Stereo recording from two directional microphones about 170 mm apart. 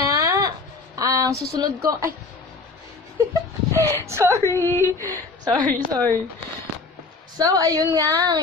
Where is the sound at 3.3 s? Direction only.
20° right (ahead or behind).